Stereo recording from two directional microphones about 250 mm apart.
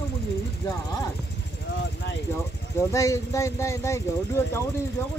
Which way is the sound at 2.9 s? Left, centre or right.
Centre.